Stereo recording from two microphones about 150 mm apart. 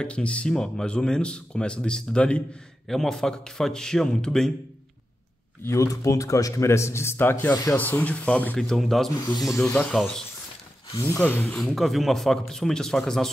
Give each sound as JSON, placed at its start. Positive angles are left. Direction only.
{"t": 0.0, "sound": "speech", "side_deg": 5}
{"t": 5.6, "sound": "speech", "side_deg": 20}
{"t": 9.1, "sound": "speech", "side_deg": 25}
{"t": 9.4, "sound": "speech", "side_deg": 0}
{"t": 9.7, "sound": "speech", "side_deg": 15}
{"t": 11.0, "sound": "speech", "side_deg": 15}